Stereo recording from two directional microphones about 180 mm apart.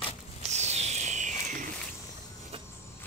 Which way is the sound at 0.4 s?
40° right (ahead or behind).